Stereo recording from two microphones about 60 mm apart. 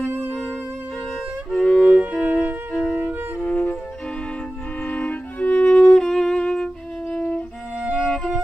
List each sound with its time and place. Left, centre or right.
1.5 s violin: centre
2.0 s music: right
3.4 s music: left
4.8 s music: left